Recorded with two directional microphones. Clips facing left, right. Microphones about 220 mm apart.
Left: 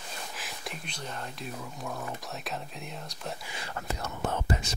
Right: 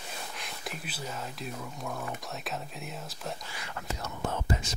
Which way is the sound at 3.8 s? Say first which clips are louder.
Left 1 dB; 60° left (ahead or behind).